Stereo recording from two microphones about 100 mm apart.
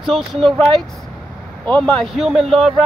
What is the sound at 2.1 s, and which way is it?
Speech, 5° right (ahead or behind).